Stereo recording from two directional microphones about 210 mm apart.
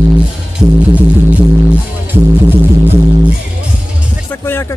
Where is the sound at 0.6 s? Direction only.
5° right (ahead or behind).